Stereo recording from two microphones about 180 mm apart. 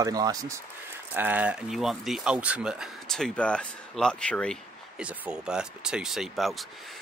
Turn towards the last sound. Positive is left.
turn(degrees=0)  # may be behind; listen again after turning